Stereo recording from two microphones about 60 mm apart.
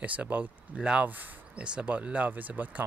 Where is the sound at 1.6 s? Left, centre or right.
Centre.